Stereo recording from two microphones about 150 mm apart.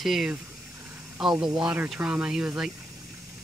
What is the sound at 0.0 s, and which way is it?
Speech, 5° right (ahead or behind).